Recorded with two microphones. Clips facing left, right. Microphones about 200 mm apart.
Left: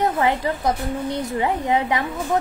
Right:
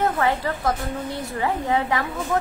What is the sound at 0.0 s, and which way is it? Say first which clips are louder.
A woman's voice: left 2 dB; 20° left (ahead or behind).